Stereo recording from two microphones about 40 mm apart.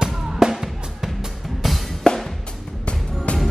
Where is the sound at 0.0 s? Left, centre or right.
Centre.